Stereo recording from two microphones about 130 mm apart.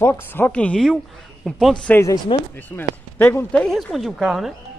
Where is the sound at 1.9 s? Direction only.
20° left (ahead or behind).